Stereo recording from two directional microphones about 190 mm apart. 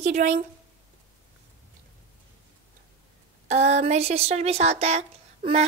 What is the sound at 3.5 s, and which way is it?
A woman's voice, 35° right (ahead or behind).